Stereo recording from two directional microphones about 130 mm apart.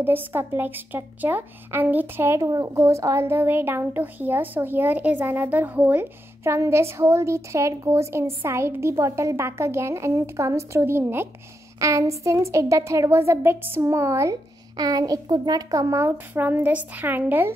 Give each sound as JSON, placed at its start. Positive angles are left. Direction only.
{"t": 0.0, "sound": "a woman's voice", "side_deg": -15}